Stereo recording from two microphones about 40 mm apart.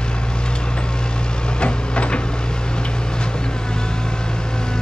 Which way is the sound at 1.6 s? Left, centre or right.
Left.